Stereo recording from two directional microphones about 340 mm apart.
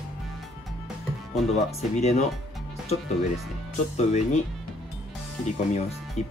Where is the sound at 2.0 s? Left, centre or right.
Centre.